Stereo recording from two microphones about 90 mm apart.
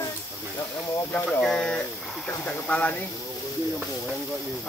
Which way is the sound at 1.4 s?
5° left (ahead or behind).